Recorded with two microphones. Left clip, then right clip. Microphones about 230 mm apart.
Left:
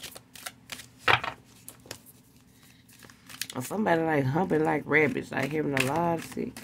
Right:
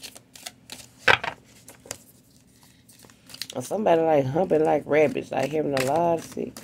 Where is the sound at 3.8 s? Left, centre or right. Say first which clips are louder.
Right 6 dB; left.